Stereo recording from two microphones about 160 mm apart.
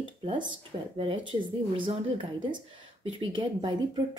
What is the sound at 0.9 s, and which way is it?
A woman's voice, 35° right (ahead or behind).